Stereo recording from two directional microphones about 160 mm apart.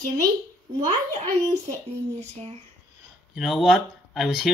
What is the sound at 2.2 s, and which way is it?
Speech, 40° right (ahead or behind).